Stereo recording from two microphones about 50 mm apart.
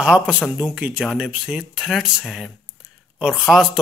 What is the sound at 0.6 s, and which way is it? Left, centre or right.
Speech, right.